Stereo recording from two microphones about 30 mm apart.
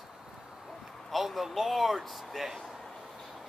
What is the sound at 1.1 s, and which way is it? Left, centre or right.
Speech, centre.